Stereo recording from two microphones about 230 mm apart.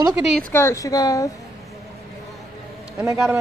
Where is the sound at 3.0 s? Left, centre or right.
Centre.